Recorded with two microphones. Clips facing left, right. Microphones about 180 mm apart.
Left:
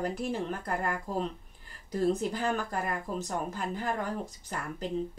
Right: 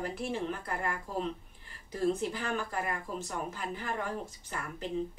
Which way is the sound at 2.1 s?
40° left (ahead or behind).